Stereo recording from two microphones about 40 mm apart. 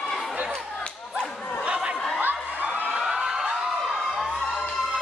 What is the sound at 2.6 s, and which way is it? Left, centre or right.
Emergency vehicle, right.